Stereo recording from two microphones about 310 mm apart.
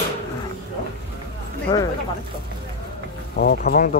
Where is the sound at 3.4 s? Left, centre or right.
Left.